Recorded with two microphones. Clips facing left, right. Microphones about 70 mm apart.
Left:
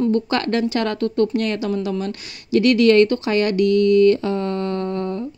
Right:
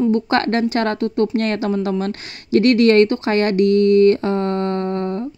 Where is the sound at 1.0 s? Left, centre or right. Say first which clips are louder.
Even; right.